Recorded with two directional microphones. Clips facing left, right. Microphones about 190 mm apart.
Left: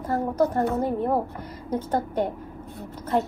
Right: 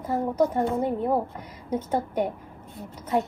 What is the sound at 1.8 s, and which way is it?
Speech, 10° right (ahead or behind).